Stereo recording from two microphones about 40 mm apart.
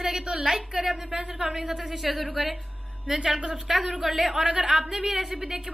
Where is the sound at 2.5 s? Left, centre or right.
Centre.